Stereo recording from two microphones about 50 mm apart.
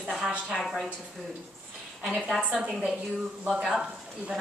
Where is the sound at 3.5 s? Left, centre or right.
Centre.